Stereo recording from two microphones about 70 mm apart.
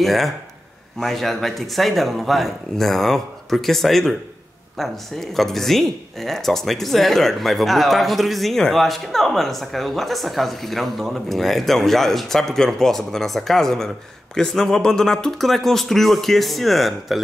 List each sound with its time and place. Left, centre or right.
0.0 s speech: centre